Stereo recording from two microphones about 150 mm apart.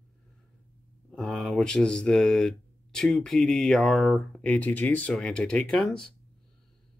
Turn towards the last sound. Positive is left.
turn(degrees=5)  # may be behind; listen again after turning